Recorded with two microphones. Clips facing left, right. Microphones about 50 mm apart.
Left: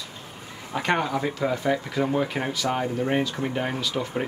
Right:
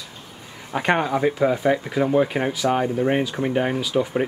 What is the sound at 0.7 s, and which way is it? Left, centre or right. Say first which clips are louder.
Speech: right 4 dB; right.